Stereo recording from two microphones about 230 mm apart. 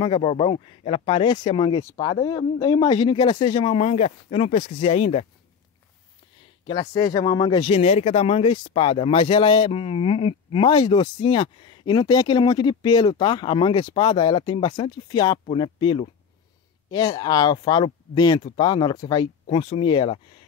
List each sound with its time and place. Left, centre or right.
0.0 s speech: left
6.7 s speech: left